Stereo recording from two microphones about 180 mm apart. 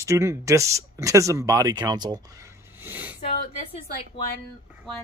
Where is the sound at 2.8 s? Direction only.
10° right (ahead or behind).